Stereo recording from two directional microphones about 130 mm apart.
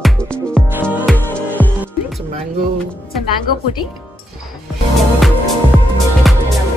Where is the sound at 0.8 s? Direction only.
10° left (ahead or behind).